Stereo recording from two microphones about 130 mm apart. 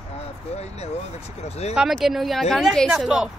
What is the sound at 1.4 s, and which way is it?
Speech, 55° left (ahead or behind).